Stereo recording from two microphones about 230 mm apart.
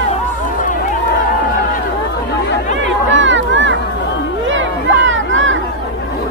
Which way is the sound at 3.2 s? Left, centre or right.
Right.